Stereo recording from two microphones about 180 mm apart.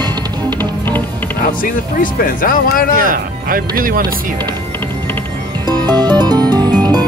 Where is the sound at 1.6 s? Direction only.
50° left (ahead or behind).